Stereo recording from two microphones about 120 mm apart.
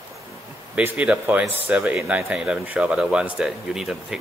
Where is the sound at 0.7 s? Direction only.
10° right (ahead or behind).